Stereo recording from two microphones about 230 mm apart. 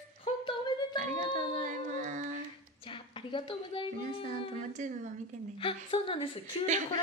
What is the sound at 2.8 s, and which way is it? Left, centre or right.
Speech, left.